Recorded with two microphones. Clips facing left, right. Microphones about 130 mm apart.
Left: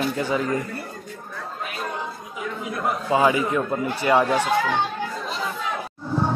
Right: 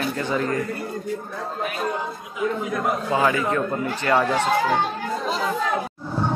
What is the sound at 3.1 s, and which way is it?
A man's voice, 15° left (ahead or behind).